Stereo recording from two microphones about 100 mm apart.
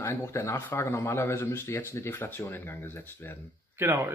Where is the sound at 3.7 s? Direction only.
25° right (ahead or behind).